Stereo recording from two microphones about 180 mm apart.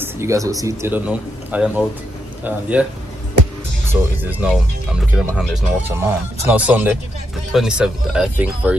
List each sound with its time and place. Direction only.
0.0 s speech: 15° right (ahead or behind)
4.2 s speech: 10° right (ahead or behind)